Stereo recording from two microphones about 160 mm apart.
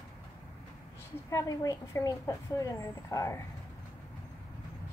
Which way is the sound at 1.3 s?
20° left (ahead or behind).